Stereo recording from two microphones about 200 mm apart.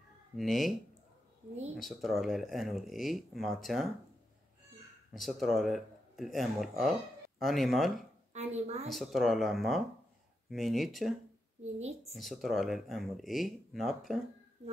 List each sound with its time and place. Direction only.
0.4 s speech: centre (ahead or behind)
1.8 s speech: centre (ahead or behind)
5.1 s speech: centre (ahead or behind)
8.3 s a woman's voice: 35° right (ahead or behind)
8.8 s speech: centre (ahead or behind)